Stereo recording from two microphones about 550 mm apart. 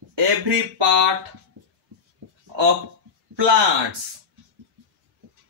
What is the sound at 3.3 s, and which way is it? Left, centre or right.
Speech, right.